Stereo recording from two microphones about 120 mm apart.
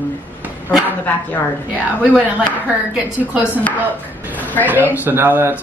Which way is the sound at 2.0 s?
10° right (ahead or behind).